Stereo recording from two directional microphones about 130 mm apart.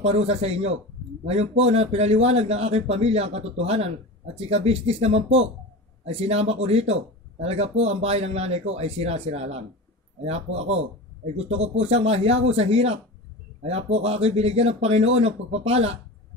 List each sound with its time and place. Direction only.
0.1 s a man's voice: 50° right (ahead or behind)